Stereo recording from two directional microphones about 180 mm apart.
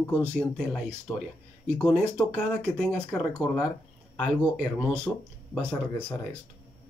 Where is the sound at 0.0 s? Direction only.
10° left (ahead or behind).